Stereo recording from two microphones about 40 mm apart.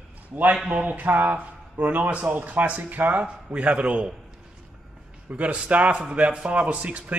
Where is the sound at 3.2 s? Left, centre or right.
Right.